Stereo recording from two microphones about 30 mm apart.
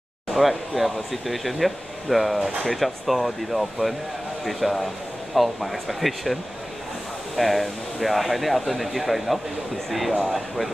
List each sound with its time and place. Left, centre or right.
0.3 s speech: centre
7.3 s speech: centre
10.1 s speech: centre